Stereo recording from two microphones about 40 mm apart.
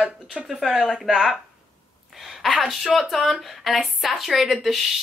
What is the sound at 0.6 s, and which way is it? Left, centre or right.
Speech, centre.